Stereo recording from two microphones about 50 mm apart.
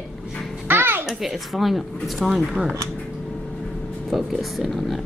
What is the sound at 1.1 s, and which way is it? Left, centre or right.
Speech, centre.